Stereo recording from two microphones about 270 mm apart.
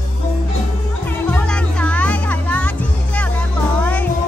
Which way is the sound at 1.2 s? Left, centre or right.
Centre.